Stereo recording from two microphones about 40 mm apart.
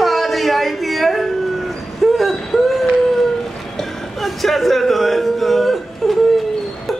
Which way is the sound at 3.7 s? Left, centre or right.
Centre.